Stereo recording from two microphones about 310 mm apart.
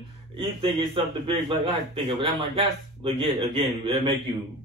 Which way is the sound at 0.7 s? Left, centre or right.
Centre.